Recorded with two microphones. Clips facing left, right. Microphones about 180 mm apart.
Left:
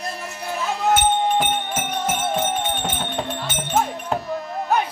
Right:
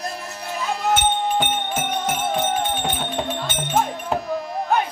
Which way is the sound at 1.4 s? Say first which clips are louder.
Even; centre (ahead or behind).